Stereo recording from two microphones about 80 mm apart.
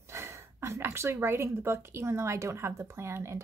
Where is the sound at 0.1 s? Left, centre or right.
Right.